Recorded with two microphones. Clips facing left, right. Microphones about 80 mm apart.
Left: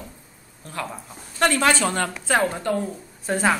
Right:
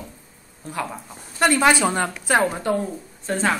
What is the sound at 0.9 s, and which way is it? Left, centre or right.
Speech, centre.